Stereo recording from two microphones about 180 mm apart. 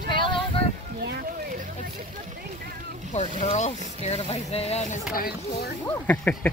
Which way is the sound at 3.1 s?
40° left (ahead or behind).